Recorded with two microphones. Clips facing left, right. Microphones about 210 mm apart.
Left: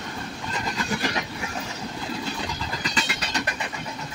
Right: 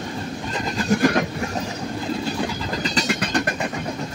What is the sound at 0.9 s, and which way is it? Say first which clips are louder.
Train: right 12 dB; 50° right (ahead or behind).